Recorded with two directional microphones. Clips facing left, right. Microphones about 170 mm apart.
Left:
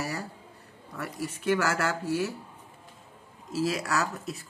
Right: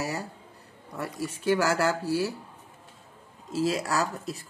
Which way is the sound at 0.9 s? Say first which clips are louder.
Right 2 dB; 30° right (ahead or behind).